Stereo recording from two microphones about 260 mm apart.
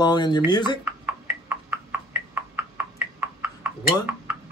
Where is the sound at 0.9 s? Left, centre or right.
Centre.